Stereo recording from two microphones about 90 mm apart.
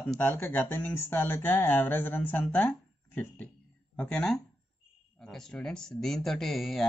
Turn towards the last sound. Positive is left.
turn(degrees=0)  # may be behind; listen again after turning